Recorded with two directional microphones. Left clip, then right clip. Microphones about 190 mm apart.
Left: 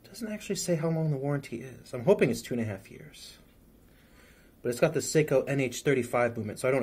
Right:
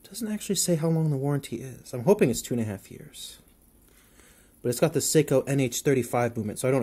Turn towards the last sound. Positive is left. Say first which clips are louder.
# right 2 dB
turn(degrees=-40)  # may be behind; listen again after turning